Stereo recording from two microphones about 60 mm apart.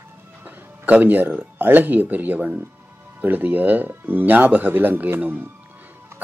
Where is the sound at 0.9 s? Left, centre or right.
Right.